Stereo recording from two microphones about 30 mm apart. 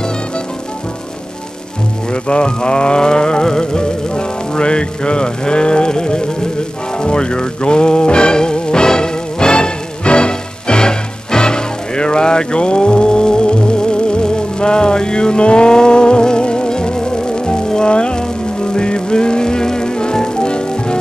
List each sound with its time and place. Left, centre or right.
2.2 s music: left